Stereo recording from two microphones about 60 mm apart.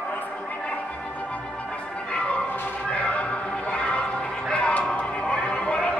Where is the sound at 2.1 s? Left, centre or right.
Centre.